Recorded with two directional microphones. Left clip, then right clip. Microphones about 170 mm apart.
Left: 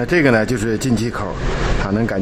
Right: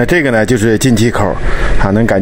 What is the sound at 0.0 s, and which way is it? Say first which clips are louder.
Speech: right 4 dB; 30° right (ahead or behind).